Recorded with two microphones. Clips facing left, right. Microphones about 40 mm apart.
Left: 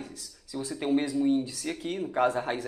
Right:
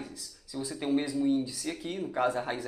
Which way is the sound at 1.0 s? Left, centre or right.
Left.